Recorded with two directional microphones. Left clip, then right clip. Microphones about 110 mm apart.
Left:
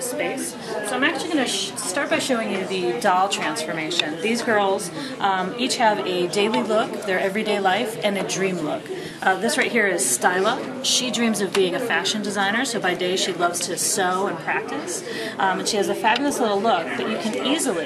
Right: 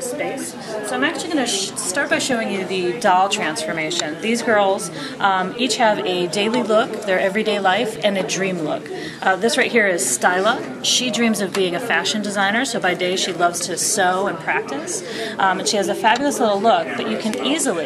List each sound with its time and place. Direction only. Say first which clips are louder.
0.9 s a woman's voice: right 1 dB; 5° right (ahead or behind)